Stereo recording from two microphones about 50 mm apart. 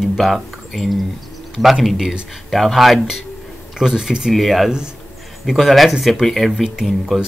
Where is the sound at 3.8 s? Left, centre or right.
Centre.